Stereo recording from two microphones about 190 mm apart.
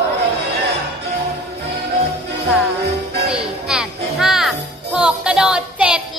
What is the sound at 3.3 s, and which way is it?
Music, 5° right (ahead or behind).